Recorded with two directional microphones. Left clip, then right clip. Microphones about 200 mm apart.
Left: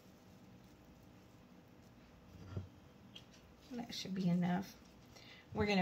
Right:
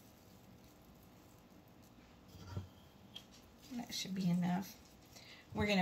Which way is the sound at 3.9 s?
25° left (ahead or behind).